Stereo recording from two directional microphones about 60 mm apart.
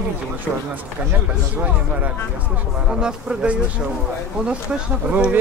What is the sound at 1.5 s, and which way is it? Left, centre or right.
Speech, right.